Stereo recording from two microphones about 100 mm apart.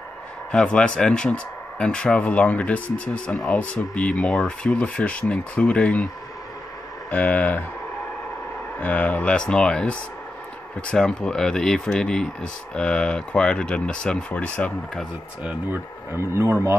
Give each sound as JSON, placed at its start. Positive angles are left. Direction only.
{"t": 0.5, "sound": "speech", "side_deg": 10}
{"t": 7.1, "sound": "speech", "side_deg": 15}
{"t": 8.7, "sound": "speech", "side_deg": 15}
{"t": 15.7, "sound": "speech", "side_deg": -25}